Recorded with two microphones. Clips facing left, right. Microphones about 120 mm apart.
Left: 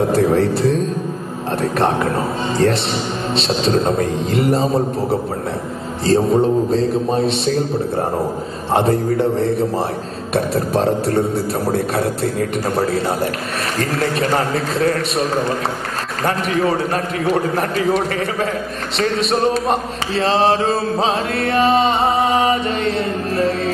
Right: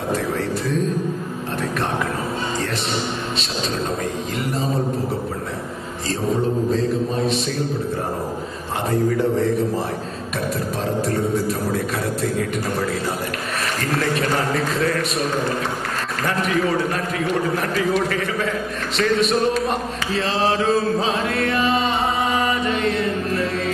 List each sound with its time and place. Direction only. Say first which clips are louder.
0.1 s a sound: left 8 dB; 30° left (ahead or behind)
1.6 s a man's voice: left 7 dB; 30° left (ahead or behind)
3.3 s mantra: left 8 dB; 30° left (ahead or behind)
6.0 s mantra: left 8 dB; 30° left (ahead or behind)
8.8 s mantra: right 2 dB; 30° left (ahead or behind)
11.3 s mantra: left 3 dB; 30° left (ahead or behind)
14.5 s mantra: left 3 dB; 30° left (ahead or behind)
16.5 s mantra: left 3 dB; 35° left (ahead or behind)